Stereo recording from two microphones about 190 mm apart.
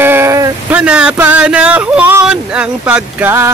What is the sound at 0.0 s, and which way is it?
Vehicle, 10° right (ahead or behind).